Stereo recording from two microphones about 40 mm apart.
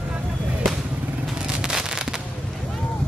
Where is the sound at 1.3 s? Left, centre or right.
Centre.